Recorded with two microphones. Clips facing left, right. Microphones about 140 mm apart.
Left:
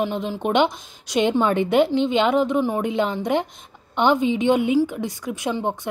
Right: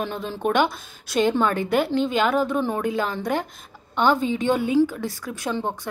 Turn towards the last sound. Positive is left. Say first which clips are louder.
# left 3 dB
turn(degrees=20)  # may be behind; listen again after turning